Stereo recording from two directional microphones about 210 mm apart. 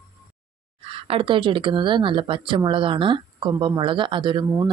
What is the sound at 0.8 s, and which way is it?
Speech, 25° right (ahead or behind).